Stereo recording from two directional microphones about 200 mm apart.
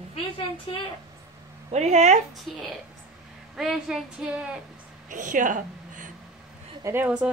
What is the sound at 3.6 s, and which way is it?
Speech, centre (ahead or behind).